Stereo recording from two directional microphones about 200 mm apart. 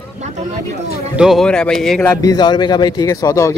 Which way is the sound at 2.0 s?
15° left (ahead or behind).